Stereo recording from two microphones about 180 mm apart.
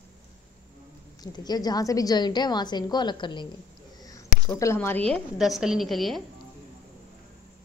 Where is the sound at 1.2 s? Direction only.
20° left (ahead or behind).